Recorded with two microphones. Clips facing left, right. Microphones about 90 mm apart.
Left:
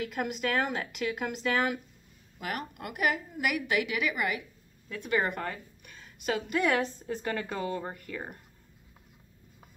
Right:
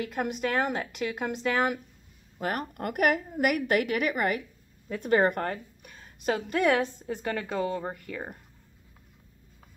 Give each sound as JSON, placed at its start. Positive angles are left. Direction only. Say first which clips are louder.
{"t": 0.1, "sound": "a woman's voice", "louder": "right 3 dB", "side_deg": -30}
{"t": 5.9, "sound": "a sound", "louder": "right 3 dB", "side_deg": -35}
{"t": 6.7, "sound": "speech", "louder": "right 3 dB", "side_deg": -15}